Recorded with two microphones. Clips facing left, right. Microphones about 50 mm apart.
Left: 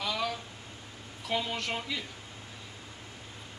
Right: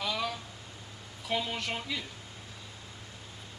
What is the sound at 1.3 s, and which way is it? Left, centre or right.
Speech, centre.